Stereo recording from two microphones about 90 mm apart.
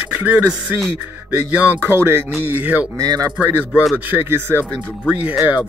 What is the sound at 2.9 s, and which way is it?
Speech, 45° right (ahead or behind).